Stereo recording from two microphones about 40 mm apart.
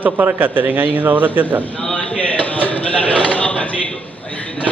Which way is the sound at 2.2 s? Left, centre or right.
Left.